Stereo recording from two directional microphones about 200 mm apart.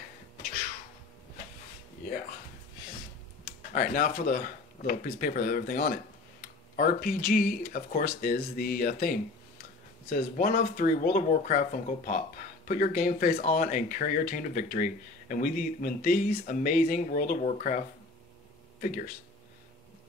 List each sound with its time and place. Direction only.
3.4 s speech: 40° left (ahead or behind)